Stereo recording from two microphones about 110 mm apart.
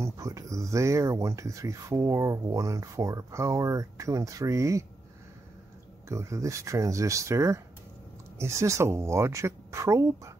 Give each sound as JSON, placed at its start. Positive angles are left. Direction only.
{"t": 0.0, "sound": "speech", "side_deg": -30}
{"t": 6.0, "sound": "speech", "side_deg": -30}